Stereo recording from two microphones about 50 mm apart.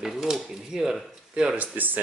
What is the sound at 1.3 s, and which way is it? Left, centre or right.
Speech, centre.